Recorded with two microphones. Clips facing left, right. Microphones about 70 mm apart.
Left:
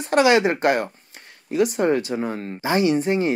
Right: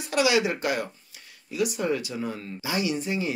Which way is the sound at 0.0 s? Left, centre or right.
Left.